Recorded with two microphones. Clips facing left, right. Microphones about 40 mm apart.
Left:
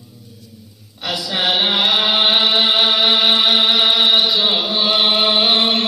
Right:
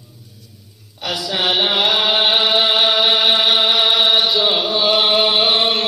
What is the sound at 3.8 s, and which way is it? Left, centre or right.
Chant, centre.